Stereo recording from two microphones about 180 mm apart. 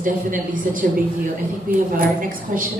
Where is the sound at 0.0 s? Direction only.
45° right (ahead or behind).